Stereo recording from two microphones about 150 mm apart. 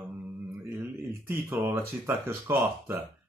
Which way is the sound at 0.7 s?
15° right (ahead or behind).